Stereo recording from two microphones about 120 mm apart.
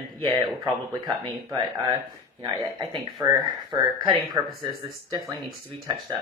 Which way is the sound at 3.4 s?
40° right (ahead or behind).